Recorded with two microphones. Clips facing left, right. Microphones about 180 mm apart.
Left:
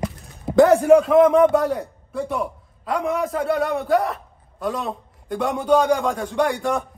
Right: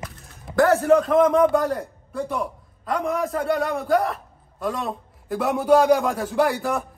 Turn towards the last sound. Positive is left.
turn(degrees=-5)  # may be behind; listen again after turning